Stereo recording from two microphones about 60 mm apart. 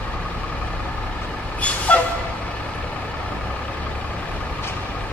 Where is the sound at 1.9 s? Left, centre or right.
Left.